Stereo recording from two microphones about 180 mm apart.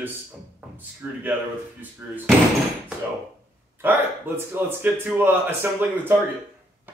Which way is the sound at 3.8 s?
10° right (ahead or behind).